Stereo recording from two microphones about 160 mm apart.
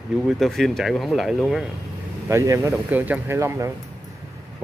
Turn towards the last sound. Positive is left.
turn(degrees=-20)  # may be behind; listen again after turning